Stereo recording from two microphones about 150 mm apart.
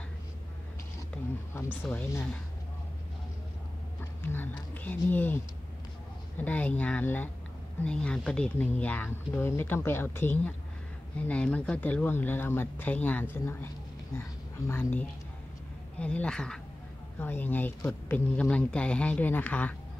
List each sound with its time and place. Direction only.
1.5 s speech: 15° left (ahead or behind)
4.8 s speech: 15° left (ahead or behind)
14.7 s speech: 15° left (ahead or behind)